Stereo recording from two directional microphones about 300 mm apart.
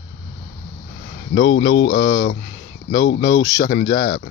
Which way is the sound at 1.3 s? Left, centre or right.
Left.